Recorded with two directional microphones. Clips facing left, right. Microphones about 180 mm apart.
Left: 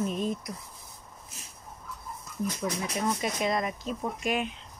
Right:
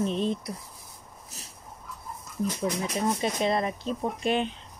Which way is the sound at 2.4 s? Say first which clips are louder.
Right 3 dB; 30° right (ahead or behind).